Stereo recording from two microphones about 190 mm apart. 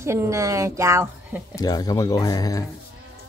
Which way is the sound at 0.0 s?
15° right (ahead or behind).